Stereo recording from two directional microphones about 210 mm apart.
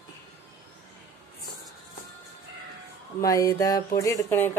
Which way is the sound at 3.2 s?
15° left (ahead or behind).